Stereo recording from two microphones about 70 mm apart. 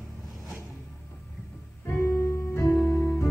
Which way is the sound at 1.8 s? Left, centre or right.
Left.